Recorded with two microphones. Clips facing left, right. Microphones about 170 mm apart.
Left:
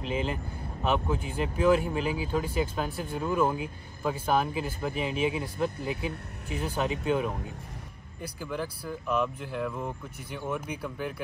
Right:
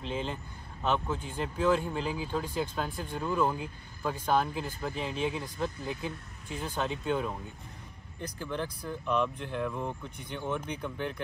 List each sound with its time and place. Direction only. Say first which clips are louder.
0.1 s speech: left 4 dB; 10° left (ahead or behind)
4.1 s speech: left 1 dB; 5° left (ahead or behind)